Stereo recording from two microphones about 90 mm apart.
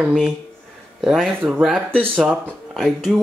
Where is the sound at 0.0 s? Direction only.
Centre (ahead or behind).